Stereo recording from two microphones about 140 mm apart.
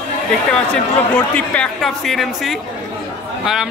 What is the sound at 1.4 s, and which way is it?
Speech, 5° left (ahead or behind).